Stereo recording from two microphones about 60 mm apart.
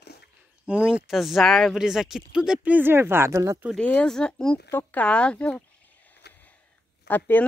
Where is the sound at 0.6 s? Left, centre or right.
Centre.